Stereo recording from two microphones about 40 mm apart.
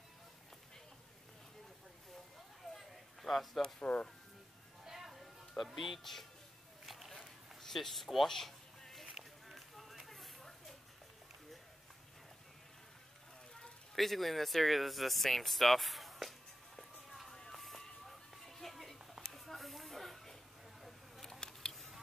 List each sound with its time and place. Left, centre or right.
2.7 s a sound: centre
3.8 s speech: left
4.8 s music: centre
5.6 s speech: centre
6.9 s walk: centre
7.6 s a sound: centre
13.9 s speech: centre
17.3 s music: centre
19.3 s a sound: centre